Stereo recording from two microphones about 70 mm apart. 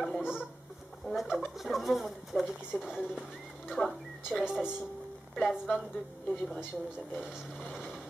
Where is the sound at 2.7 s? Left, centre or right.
Centre.